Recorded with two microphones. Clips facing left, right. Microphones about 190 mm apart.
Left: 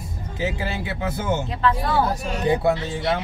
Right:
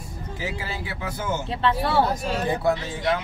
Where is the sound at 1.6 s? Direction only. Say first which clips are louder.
Right 1 dB; 30° right (ahead or behind).